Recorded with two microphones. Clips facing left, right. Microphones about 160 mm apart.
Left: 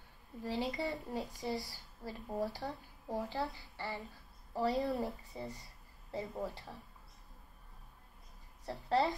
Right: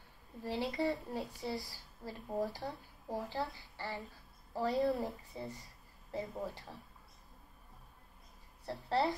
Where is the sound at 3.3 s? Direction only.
20° left (ahead or behind).